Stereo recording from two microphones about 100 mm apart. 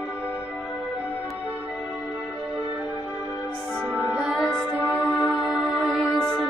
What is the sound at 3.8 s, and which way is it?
Music, 20° right (ahead or behind).